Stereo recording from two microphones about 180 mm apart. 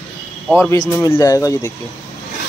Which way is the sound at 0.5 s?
15° left (ahead or behind).